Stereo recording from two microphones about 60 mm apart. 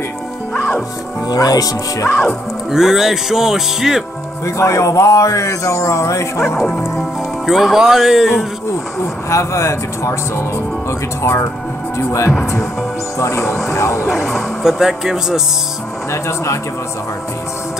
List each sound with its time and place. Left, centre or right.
1.3 s speech: left
2.7 s music: centre
4.5 s speech: left
7.4 s speech: centre
9.3 s speech: left
13.7 s speech: left
14.0 s speech: centre
16.1 s speech: left